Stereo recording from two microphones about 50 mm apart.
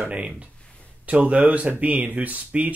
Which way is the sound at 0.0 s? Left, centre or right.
Right.